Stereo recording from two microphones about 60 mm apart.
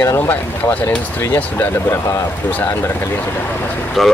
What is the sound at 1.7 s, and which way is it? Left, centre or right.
Speech, left.